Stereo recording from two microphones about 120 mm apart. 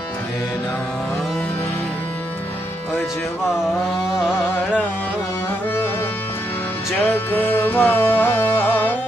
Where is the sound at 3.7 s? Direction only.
5° right (ahead or behind).